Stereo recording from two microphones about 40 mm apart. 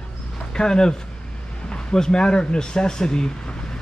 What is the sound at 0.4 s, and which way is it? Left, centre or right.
Speech, centre.